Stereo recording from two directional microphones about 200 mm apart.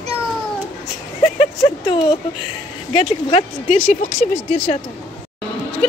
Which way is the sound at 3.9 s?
40° left (ahead or behind).